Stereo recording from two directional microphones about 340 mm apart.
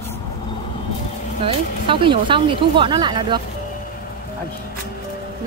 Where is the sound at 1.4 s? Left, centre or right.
Centre.